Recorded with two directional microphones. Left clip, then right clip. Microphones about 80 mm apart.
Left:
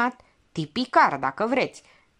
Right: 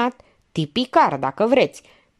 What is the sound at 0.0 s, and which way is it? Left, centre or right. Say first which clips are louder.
A woman's voice: right 3 dB; right.